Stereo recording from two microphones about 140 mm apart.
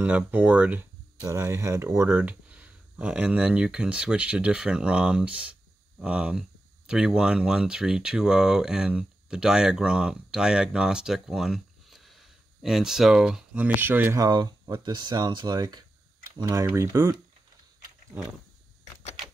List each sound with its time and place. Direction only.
0.0 s speech: 10° right (ahead or behind)
13.7 s speech: 15° right (ahead or behind)
14.2 s speech: 30° right (ahead or behind)